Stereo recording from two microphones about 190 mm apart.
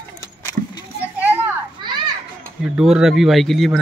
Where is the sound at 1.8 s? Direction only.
25° right (ahead or behind).